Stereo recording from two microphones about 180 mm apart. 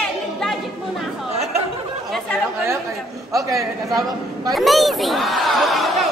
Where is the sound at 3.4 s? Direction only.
20° right (ahead or behind).